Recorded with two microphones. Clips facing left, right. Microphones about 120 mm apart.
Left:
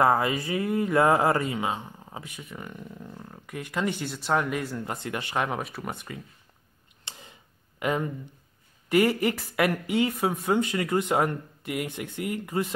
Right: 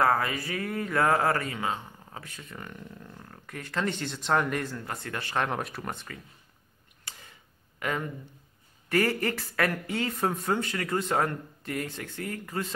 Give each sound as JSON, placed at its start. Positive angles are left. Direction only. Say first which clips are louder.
{"t": 0.0, "sound": "speech", "louder": "left 3 dB", "side_deg": 20}
{"t": 4.7, "sound": "speech", "louder": "left 4 dB", "side_deg": 20}
{"t": 5.9, "sound": "speech", "louder": "left 4 dB", "side_deg": 15}
{"t": 7.1, "sound": "tick", "louder": "left 2 dB", "side_deg": 20}
{"t": 7.8, "sound": "speech", "louder": "left 4 dB", "side_deg": 20}